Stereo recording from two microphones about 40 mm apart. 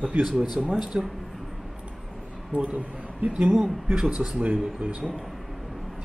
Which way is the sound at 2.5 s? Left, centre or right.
Right.